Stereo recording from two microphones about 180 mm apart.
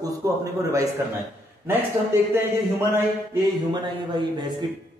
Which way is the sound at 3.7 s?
25° right (ahead or behind).